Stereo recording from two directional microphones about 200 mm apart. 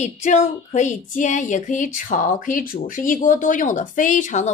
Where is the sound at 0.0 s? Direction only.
35° left (ahead or behind).